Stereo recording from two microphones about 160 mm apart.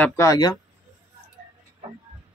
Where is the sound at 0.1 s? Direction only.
20° left (ahead or behind).